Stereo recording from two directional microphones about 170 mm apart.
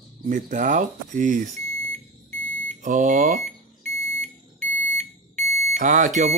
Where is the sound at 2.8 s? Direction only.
45° right (ahead or behind).